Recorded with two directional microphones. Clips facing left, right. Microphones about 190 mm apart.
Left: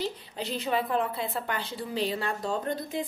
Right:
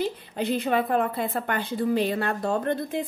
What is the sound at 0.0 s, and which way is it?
A woman's voice, 55° right (ahead or behind).